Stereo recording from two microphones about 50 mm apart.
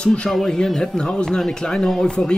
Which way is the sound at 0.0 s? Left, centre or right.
Left.